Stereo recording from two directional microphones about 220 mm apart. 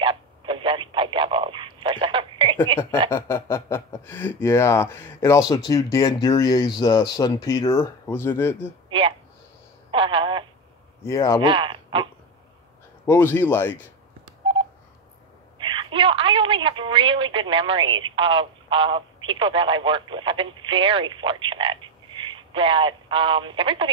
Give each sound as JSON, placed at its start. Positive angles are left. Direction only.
{"t": 0.0, "sound": "a sound", "side_deg": -25}
{"t": 3.1, "sound": "speech", "side_deg": 10}
{"t": 9.8, "sound": "telephone", "side_deg": -25}
{"t": 11.1, "sound": "speech", "side_deg": 15}
{"t": 11.4, "sound": "a sound", "side_deg": -25}
{"t": 13.0, "sound": "speech", "side_deg": 10}
{"t": 15.6, "sound": "telephone", "side_deg": -20}
{"t": 22.3, "sound": "speech", "side_deg": -25}